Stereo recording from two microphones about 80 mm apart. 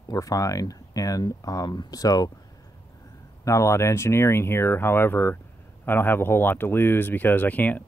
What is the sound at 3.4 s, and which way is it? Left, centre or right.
Speech, left.